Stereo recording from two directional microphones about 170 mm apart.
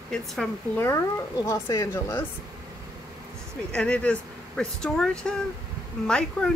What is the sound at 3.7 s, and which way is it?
Speech, 5° left (ahead or behind).